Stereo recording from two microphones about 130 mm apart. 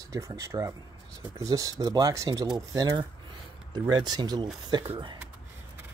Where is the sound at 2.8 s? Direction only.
35° right (ahead or behind).